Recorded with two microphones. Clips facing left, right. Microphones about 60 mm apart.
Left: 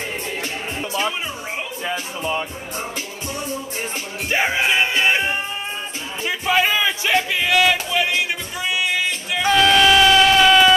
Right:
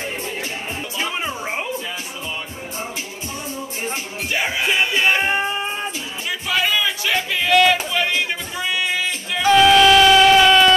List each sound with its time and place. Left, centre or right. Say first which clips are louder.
1.9 s speech: left 5 dB; left
4.3 s music: left 2 dB; left
6.2 s music: left 3 dB; left
7.3 s music: right 6 dB; centre
9.5 s a sound: right 3 dB; centre